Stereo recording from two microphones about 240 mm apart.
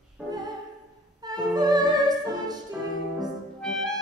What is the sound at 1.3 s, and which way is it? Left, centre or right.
Music, centre.